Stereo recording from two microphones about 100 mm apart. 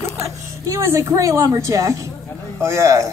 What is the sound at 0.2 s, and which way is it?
A man's voice, 30° right (ahead or behind).